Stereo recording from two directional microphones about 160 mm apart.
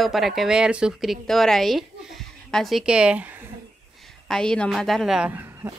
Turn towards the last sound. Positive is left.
turn(degrees=-15)  # may be behind; listen again after turning